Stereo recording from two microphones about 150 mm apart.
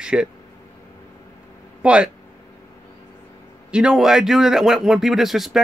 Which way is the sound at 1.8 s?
5° right (ahead or behind).